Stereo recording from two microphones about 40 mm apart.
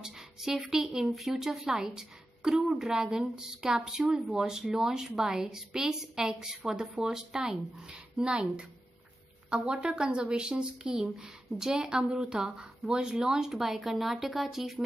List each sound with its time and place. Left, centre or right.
0.0 s speech: centre; by 12.2 s right
12.2 s speech: centre